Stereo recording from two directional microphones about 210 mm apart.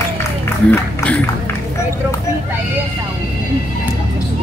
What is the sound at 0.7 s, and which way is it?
Speech, 5° left (ahead or behind).